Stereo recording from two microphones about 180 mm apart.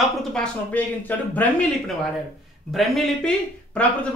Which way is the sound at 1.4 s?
10° left (ahead or behind).